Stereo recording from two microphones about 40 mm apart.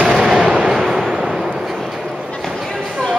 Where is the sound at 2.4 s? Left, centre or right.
Centre.